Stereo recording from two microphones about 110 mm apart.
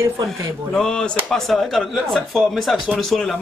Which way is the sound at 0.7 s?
5° left (ahead or behind).